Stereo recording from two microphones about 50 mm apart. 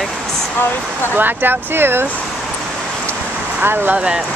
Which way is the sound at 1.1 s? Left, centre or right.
Right.